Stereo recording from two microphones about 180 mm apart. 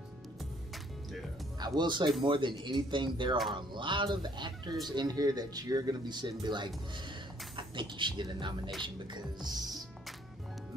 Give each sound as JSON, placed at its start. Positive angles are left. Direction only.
{"t": 1.6, "sound": "speech", "side_deg": -25}